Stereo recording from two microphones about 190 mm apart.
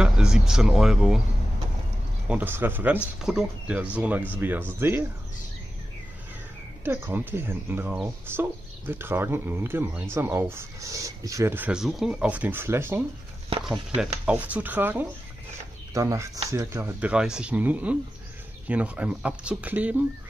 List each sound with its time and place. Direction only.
0.0 s speech: 5° right (ahead or behind)
2.2 s speech: 10° right (ahead or behind)
6.8 s speech: 10° right (ahead or behind)
14.2 s speech: 10° right (ahead or behind)